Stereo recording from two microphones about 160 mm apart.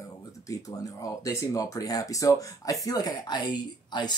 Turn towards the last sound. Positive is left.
turn(degrees=25)  # may be behind; listen again after turning